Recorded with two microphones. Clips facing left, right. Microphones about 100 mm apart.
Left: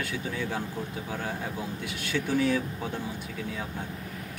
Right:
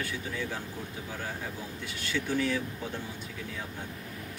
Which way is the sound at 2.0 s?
55° left (ahead or behind).